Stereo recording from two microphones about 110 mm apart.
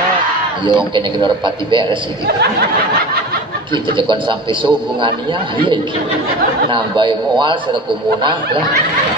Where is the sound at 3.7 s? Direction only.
45° right (ahead or behind).